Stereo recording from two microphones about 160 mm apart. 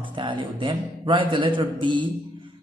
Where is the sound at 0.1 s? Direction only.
30° right (ahead or behind).